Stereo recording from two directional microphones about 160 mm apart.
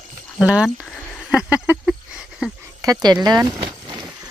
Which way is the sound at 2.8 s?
25° right (ahead or behind).